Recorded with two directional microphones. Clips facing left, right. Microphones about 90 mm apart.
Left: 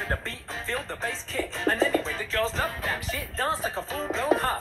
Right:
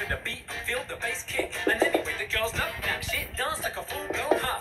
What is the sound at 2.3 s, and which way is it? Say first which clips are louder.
Music: left 3 dB; 35° left (ahead or behind).